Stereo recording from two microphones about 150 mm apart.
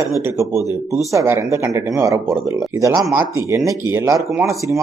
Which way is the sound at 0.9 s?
15° right (ahead or behind).